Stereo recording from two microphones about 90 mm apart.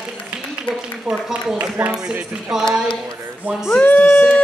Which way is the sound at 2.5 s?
5° right (ahead or behind).